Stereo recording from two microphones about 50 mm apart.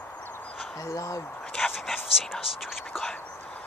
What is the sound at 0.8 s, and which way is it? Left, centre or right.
Speech, left.